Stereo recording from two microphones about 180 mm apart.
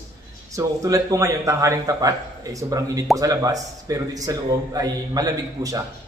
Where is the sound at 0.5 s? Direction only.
20° right (ahead or behind).